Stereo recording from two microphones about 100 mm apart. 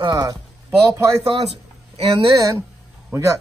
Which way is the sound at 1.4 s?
90° right.